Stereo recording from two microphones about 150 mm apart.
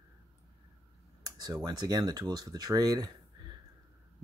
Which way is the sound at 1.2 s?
25° right (ahead or behind).